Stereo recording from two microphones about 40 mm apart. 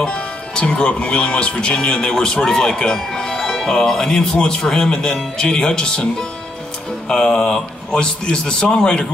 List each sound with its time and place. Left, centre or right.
0.0 s speech: left